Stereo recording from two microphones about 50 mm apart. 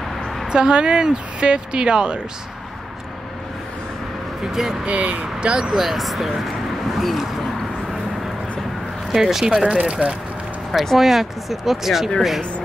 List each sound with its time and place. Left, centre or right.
0.5 s speech: centre
4.5 s speech: centre
4.8 s speech: right
5.2 s speech: centre
9.1 s speech: centre
10.7 s speech: centre